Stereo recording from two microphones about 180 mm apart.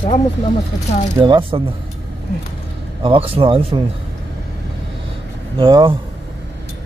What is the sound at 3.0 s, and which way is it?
Speech, 30° right (ahead or behind).